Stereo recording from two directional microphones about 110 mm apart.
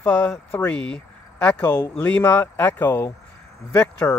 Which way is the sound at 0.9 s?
10° left (ahead or behind).